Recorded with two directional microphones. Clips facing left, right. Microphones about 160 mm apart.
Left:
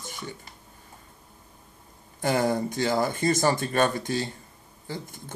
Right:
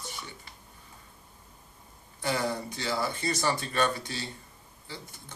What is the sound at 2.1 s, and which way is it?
Speech, 45° left (ahead or behind).